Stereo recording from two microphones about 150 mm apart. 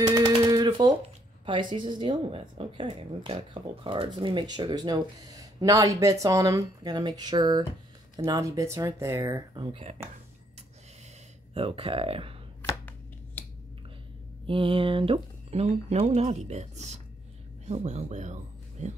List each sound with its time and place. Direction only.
0.0 s a sound: 25° right (ahead or behind)
1.4 s a woman's voice: 35° right (ahead or behind)
11.5 s a woman's voice: 40° right (ahead or behind)
12.6 s finger snapping: 10° left (ahead or behind)
14.4 s speech: 35° right (ahead or behind); by 18.9 s 50° right (ahead or behind)